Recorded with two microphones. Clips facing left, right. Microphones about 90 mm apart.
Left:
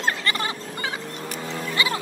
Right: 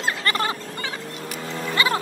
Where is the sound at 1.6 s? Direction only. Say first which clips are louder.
Right 4 dB; 35° right (ahead or behind).